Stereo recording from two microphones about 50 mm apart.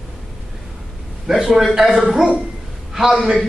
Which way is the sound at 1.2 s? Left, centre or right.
Centre.